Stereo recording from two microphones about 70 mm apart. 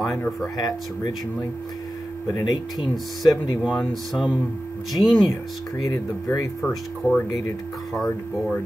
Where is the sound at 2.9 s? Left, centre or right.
Centre.